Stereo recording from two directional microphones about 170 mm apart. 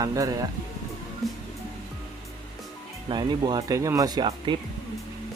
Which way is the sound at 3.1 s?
25° right (ahead or behind).